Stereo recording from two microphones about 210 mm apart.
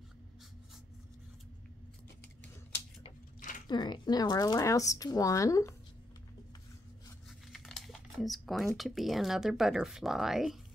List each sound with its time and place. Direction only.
3.3 s a sound: 40° left (ahead or behind)
3.6 s speech: 20° left (ahead or behind)
7.2 s crumpling: centre (ahead or behind)
8.7 s speech: centre (ahead or behind)